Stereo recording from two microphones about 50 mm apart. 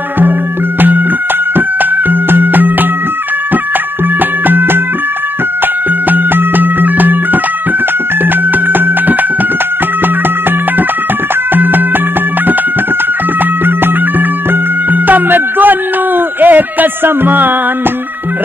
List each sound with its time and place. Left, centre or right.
0.7 s music: right
2.0 s music: right
4.5 s music: right
6.0 s music: right
11.5 s music: right
14.9 s music: right